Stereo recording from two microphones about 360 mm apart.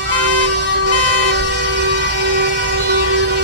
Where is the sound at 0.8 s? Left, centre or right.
Right.